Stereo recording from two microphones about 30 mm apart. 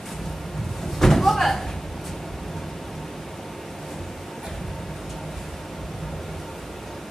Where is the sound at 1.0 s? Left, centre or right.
Centre.